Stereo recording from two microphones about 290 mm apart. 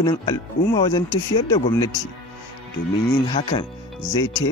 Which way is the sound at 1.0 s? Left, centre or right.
Left.